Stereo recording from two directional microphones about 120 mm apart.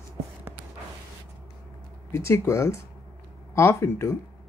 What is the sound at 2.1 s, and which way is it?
A woman's voice, 20° left (ahead or behind).